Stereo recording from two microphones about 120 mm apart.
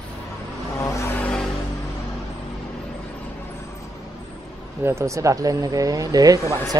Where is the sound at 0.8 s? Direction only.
25° left (ahead or behind).